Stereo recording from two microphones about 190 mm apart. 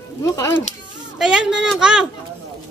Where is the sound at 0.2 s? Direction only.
15° left (ahead or behind).